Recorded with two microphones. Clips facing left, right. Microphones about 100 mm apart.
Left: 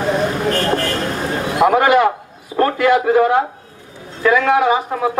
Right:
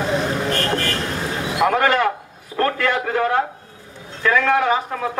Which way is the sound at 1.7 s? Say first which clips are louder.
Left 6 dB; 15° left (ahead or behind).